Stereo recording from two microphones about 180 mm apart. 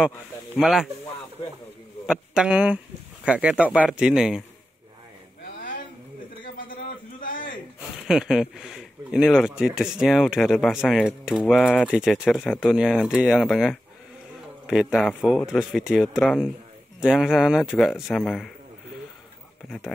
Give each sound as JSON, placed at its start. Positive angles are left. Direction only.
{"t": 0.6, "sound": "speech", "side_deg": 0}
{"t": 2.0, "sound": "a man's voice", "side_deg": -5}
{"t": 5.4, "sound": "a sound", "side_deg": 50}
{"t": 7.9, "sound": "speech", "side_deg": -5}